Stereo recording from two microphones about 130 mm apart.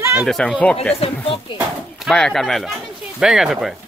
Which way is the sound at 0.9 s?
50° left (ahead or behind).